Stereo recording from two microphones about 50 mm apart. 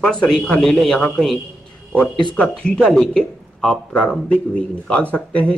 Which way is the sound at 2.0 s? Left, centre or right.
Left.